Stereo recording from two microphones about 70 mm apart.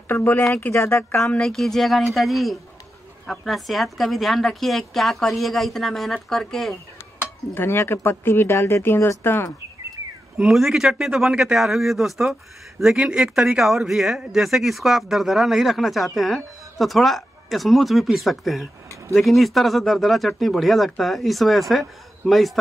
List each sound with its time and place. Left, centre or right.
0.1 s speech: left
1.3 s speech: centre
7.5 s speech: left
10.3 s a man's voice: centre